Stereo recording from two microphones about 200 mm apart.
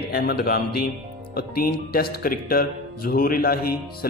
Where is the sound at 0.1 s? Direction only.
50° left (ahead or behind).